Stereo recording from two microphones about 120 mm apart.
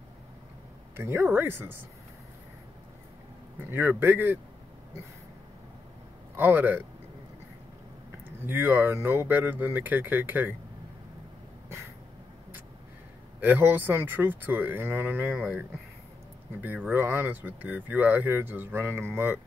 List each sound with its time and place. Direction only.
0.9 s speech: 20° right (ahead or behind)
3.7 s speech: 15° right (ahead or behind)
6.3 s speech: 15° right (ahead or behind)
8.5 s speech: 15° right (ahead or behind)
13.4 s speech: 15° right (ahead or behind)
16.6 s speech: 15° right (ahead or behind)